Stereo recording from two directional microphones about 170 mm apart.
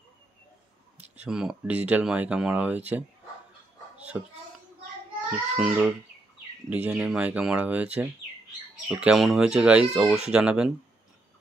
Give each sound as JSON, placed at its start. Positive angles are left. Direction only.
{"t": 0.9, "sound": "speech", "side_deg": -10}
{"t": 5.6, "sound": "speech", "side_deg": -5}